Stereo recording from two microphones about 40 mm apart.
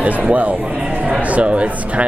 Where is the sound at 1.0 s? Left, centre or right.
Right.